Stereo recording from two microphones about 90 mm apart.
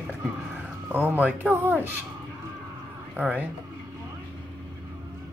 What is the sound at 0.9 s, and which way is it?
Speech, 20° right (ahead or behind).